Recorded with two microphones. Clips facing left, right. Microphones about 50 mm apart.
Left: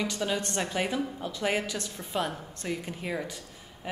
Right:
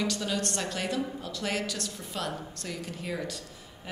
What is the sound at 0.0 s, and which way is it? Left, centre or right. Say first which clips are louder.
A woman's voice: even; centre.